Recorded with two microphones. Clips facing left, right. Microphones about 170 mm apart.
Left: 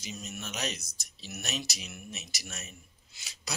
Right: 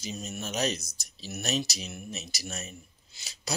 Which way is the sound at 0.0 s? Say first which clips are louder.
Right 4 dB; 30° right (ahead or behind).